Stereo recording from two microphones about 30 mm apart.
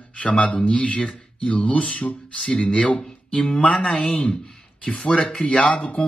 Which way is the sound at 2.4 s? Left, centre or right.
Left.